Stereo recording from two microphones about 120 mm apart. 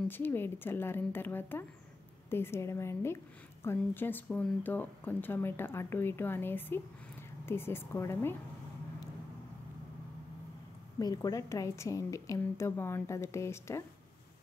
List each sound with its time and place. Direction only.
0.1 s a woman's voice: 15° left (ahead or behind)
11.0 s a woman's voice: 30° left (ahead or behind)